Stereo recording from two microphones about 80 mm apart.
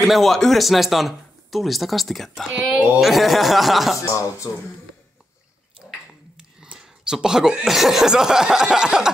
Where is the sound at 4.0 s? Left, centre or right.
Left.